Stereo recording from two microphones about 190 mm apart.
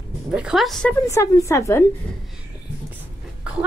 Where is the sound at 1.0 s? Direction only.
15° left (ahead or behind).